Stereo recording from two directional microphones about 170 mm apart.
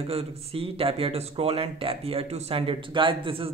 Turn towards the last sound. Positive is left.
turn(degrees=-30)  # may be behind; listen again after turning